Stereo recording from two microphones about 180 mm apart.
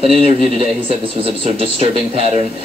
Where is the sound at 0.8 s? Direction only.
30° right (ahead or behind).